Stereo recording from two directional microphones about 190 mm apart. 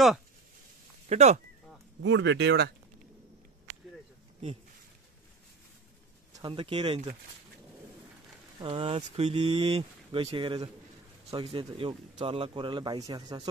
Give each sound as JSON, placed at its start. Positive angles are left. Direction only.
{"t": 1.0, "sound": "speech", "side_deg": -35}
{"t": 2.0, "sound": "speech", "side_deg": -75}
{"t": 6.3, "sound": "speech", "side_deg": -25}
{"t": 8.5, "sound": "speech", "side_deg": -25}